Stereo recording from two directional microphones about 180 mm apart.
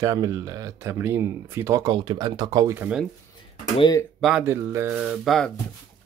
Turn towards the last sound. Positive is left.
turn(degrees=0)  # may be behind; listen again after turning